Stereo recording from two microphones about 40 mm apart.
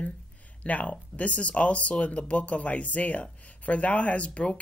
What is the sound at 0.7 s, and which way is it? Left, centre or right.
Speech, left.